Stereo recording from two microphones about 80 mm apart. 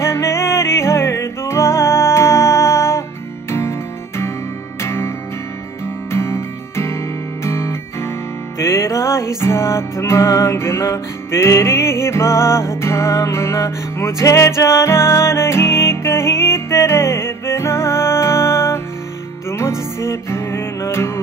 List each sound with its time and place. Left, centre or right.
0.0 s music: left
4.8 s music: left
6.1 s music: left
7.4 s guitar: left
8.5 s music: left
20.0 s music: left